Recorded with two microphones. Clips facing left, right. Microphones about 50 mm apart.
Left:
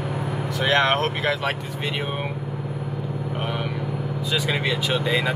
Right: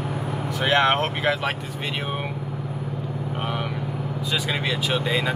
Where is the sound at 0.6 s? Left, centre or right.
Centre.